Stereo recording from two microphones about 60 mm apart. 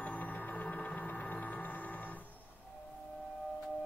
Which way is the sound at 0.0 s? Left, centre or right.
Left.